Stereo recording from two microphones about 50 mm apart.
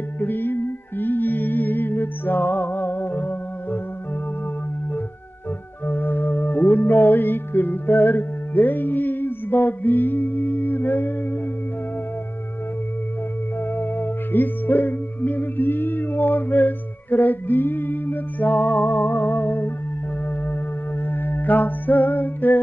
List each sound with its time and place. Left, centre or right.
0.2 s music: left
5.9 s music: left
13.7 s music: left
21.1 s music: left